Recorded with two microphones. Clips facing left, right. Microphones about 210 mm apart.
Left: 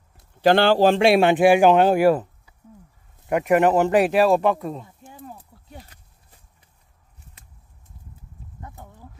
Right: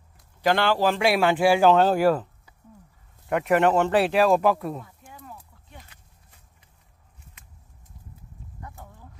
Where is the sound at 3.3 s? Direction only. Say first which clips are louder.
Left 3 dB; 10° left (ahead or behind).